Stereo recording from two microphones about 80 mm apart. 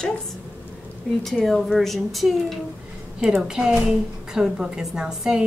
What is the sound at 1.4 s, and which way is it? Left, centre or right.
A woman's voice, centre.